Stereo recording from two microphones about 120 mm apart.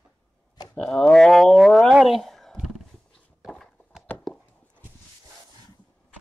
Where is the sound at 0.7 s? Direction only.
5° left (ahead or behind).